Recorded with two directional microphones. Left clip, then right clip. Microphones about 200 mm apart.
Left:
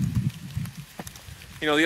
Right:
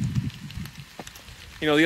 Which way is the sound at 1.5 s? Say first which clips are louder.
Right 1 dB; 15° left (ahead or behind).